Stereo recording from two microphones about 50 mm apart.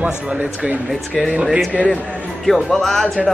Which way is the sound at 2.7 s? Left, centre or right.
Centre.